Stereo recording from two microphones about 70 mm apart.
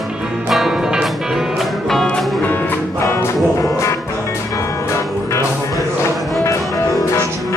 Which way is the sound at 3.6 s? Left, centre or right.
Left.